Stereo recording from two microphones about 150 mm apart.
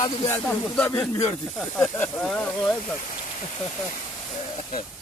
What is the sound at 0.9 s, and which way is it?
Speech, 15° left (ahead or behind).